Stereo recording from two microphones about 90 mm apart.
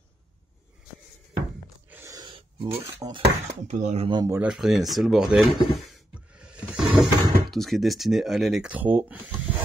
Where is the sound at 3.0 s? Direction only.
50° right (ahead or behind).